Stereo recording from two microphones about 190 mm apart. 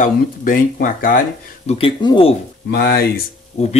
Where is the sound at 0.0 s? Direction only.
45° left (ahead or behind).